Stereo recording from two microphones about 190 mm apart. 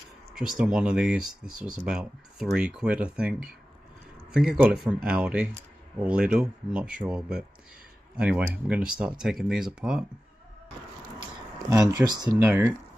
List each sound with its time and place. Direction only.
0.3 s speech: 5° right (ahead or behind)
11.7 s speech: 20° right (ahead or behind)